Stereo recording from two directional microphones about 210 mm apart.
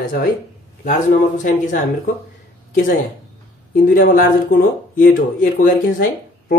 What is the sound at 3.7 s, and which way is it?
Speech, 45° left (ahead or behind).